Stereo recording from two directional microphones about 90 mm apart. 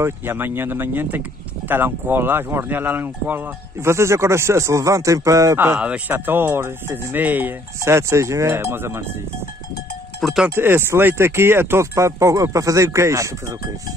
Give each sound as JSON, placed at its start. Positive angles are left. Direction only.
{"t": 0.0, "sound": "speech", "side_deg": -25}
{"t": 5.8, "sound": "speech", "side_deg": -15}
{"t": 7.8, "sound": "speech", "side_deg": -35}
{"t": 10.2, "sound": "speech", "side_deg": -5}
{"t": 10.5, "sound": "speech", "side_deg": -25}